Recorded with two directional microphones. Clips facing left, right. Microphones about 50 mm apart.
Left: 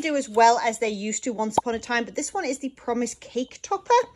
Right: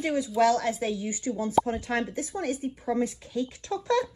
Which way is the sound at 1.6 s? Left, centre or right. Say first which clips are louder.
Left 3 dB; left.